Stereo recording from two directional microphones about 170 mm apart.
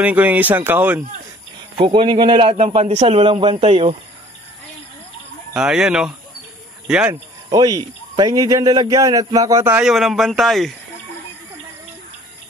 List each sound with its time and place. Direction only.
0.0 s speech: 10° right (ahead or behind)
1.8 s speech: 30° right (ahead or behind)
5.5 s speech: 5° right (ahead or behind)
7.4 s speech: 25° right (ahead or behind)
9.8 s speech: centre (ahead or behind)